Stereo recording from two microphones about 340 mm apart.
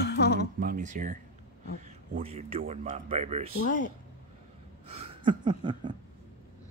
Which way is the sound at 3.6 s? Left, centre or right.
Left.